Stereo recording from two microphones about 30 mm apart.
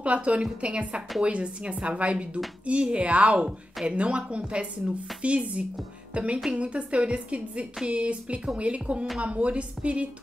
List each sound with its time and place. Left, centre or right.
0.0 s a woman's voice: right
0.4 s a woman's voice: right
3.3 s a woman's voice: right